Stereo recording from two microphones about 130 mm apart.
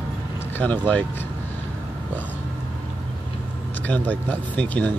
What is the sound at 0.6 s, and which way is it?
Speech, 10° left (ahead or behind).